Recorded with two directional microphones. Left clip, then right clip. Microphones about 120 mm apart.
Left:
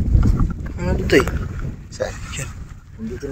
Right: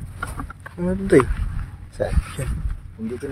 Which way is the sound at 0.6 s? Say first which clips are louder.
Even; 15° right (ahead or behind).